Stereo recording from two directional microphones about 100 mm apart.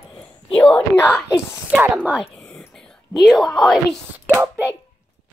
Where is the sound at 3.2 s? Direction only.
Centre (ahead or behind).